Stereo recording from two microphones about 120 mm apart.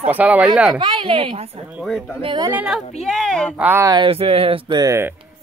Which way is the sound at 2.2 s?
45° right (ahead or behind).